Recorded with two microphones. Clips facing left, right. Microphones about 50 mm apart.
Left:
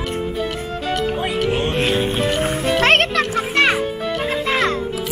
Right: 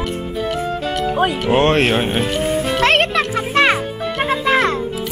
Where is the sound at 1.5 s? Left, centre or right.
Right.